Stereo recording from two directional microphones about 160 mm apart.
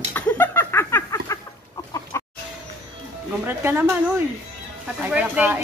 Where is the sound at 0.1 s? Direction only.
15° left (ahead or behind).